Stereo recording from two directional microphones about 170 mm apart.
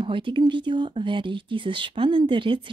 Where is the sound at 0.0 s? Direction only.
30° right (ahead or behind).